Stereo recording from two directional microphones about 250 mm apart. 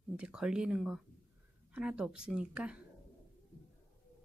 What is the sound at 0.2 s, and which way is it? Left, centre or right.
A woman's voice, centre.